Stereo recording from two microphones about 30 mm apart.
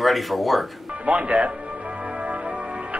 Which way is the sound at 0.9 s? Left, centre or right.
Right.